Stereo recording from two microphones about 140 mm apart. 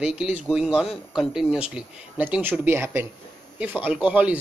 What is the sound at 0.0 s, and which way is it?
Speech, 5° right (ahead or behind).